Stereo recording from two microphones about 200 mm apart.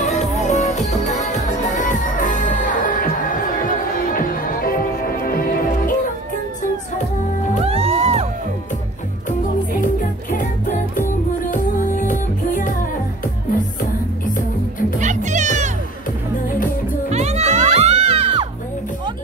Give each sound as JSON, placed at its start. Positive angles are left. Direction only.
{"t": 0.0, "sound": "music", "side_deg": 35}
{"t": 4.1, "sound": "music", "side_deg": 45}
{"t": 7.6, "sound": "music", "side_deg": -30}
{"t": 11.5, "sound": "music", "side_deg": 40}
{"t": 13.7, "sound": "music", "side_deg": 40}
{"t": 15.0, "sound": "music", "side_deg": -35}
{"t": 17.1, "sound": "music", "side_deg": -35}